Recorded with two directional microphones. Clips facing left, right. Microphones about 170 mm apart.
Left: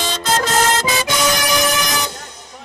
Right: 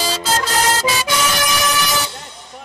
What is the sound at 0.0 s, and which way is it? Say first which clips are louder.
Music: right 1 dB; 10° right (ahead or behind).